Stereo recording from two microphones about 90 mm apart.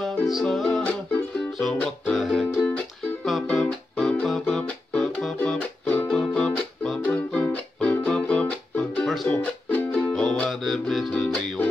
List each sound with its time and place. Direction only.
0.0 s music: centre (ahead or behind)
2.1 s music: centre (ahead or behind)
5.9 s music: 15° left (ahead or behind)
9.0 s music: centre (ahead or behind)
9.3 s music: 20° left (ahead or behind)
10.0 s music: 5° left (ahead or behind)